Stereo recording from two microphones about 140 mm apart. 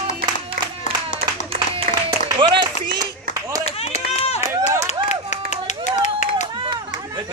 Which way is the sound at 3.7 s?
50° left (ahead or behind).